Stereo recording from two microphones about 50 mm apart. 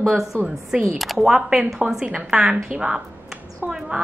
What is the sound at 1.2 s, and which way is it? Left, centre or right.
A woman's voice, centre.